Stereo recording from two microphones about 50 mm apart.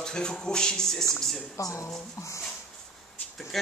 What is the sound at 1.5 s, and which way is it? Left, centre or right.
Speech, left.